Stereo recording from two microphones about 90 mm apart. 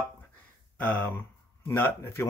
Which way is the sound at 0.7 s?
15° left (ahead or behind).